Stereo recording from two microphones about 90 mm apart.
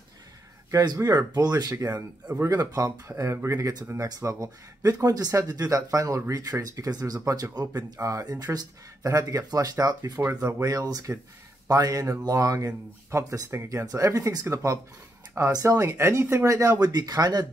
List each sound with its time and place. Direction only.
0.7 s speech: 40° right (ahead or behind)
1.8 s speech: 35° right (ahead or behind)